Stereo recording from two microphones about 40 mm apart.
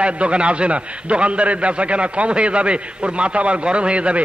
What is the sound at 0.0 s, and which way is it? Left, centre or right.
A man's voice, right.